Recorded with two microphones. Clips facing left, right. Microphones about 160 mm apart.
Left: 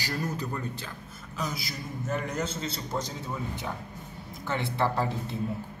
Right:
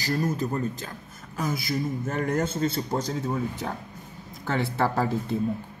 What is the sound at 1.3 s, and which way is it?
Speech, 55° right (ahead or behind).